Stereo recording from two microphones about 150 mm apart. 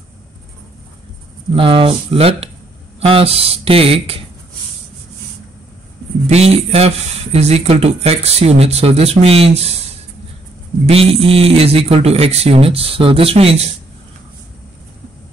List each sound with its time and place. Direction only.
1.5 s speech: 40° right (ahead or behind)
6.2 s speech: 45° right (ahead or behind)
10.9 s speech: 40° right (ahead or behind)